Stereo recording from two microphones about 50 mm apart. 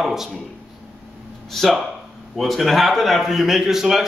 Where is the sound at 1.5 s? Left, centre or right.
Centre.